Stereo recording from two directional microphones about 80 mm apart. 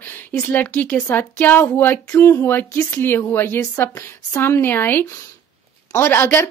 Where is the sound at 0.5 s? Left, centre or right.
Left.